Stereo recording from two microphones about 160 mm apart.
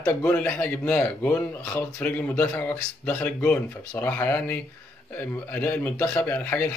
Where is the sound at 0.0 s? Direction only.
10° left (ahead or behind).